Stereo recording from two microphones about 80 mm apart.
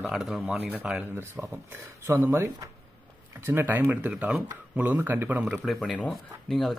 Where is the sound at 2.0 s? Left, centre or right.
Right.